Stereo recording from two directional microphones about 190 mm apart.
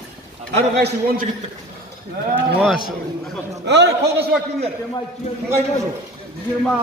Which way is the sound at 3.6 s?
65° right (ahead or behind).